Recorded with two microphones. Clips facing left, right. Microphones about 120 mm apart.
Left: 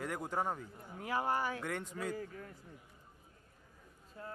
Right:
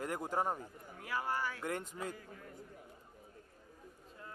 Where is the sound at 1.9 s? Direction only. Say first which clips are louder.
Left 2 dB; 20° right (ahead or behind).